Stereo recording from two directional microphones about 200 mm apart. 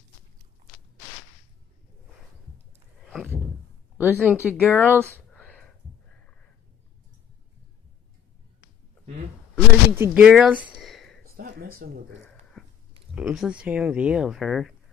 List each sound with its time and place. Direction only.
4.0 s speech: 5° right (ahead or behind)
5.1 s a sound: 5° left (ahead or behind)
9.9 s speech: 10° right (ahead or behind)
11.3 s speech: 45° right (ahead or behind)
12.3 s a sound: 5° left (ahead or behind)
13.1 s speech: centre (ahead or behind)